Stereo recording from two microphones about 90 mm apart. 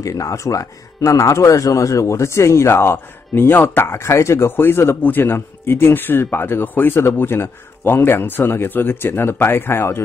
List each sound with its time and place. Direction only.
0.0 s speech: 40° left (ahead or behind)